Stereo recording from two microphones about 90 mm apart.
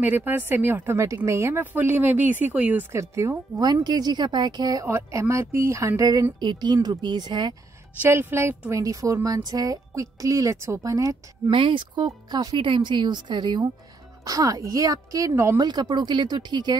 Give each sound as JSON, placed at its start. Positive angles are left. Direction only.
{"t": 0.0, "sound": "speech", "side_deg": -20}
{"t": 3.0, "sound": "a woman's voice", "side_deg": -35}
{"t": 3.6, "sound": "speech", "side_deg": -50}
{"t": 4.8, "sound": "a woman's voice", "side_deg": -30}
{"t": 6.4, "sound": "speech", "side_deg": -55}
{"t": 8.0, "sound": "a woman's voice", "side_deg": -25}
{"t": 11.5, "sound": "speech", "side_deg": -65}
{"t": 14.2, "sound": "a woman's voice", "side_deg": -40}
{"t": 15.6, "sound": "speech", "side_deg": -50}